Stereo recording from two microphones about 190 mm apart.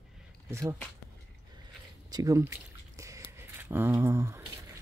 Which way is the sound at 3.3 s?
10° right (ahead or behind).